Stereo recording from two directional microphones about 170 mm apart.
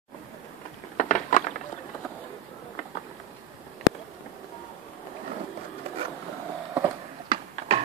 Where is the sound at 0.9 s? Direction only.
50° left (ahead or behind).